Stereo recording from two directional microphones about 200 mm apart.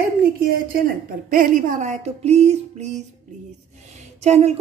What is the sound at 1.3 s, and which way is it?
A woman's voice, 40° right (ahead or behind).